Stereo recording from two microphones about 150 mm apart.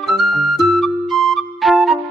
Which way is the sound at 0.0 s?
Centre (ahead or behind).